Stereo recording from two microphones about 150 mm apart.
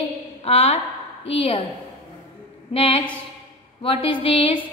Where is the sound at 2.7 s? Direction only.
40° left (ahead or behind).